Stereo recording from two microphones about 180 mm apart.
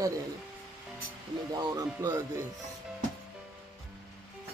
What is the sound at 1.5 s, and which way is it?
Speech, 20° right (ahead or behind).